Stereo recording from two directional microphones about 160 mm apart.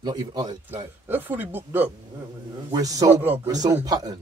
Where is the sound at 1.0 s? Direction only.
10° right (ahead or behind).